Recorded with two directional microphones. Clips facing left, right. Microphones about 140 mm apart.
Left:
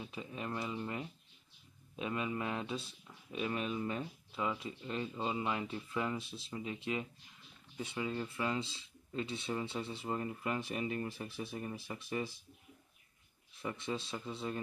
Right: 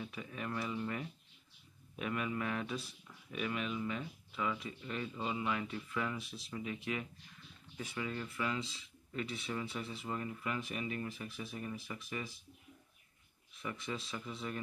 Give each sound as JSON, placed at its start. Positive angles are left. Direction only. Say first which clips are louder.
{"t": 0.0, "sound": "speech", "louder": "even", "side_deg": 25}
{"t": 4.0, "sound": "speech", "louder": "left 1 dB", "side_deg": 25}
{"t": 13.6, "sound": "speech", "louder": "left 3 dB", "side_deg": 30}